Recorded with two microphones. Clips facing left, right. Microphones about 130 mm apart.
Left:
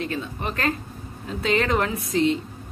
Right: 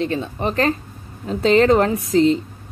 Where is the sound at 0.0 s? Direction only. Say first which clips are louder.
Right 7 dB; 30° right (ahead or behind).